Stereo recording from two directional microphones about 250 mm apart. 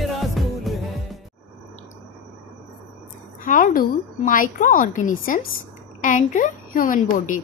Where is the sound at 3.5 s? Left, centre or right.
Left.